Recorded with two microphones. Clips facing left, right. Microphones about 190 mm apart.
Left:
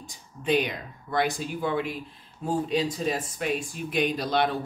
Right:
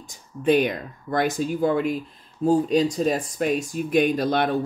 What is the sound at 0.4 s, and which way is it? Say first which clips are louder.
Speech: right 6 dB; 50° right (ahead or behind).